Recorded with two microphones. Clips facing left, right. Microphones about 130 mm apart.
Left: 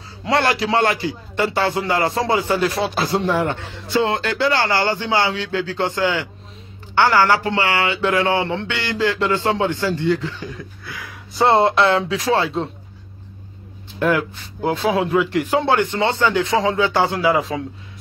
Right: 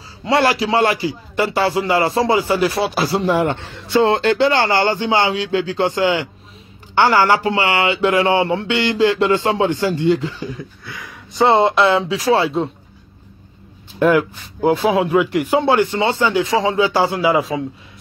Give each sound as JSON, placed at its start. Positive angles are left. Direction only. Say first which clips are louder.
{"t": 0.2, "sound": "a man's voice", "louder": "right 3 dB", "side_deg": -5}
{"t": 4.1, "sound": "speech", "louder": "right 5 dB", "side_deg": -25}
{"t": 10.9, "sound": "a man's voice", "louder": "even", "side_deg": 0}
{"t": 13.9, "sound": "a man's voice", "louder": "right 4 dB", "side_deg": -15}